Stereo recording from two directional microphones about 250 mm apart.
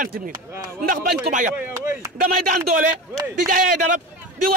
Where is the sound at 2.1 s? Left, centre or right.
Right.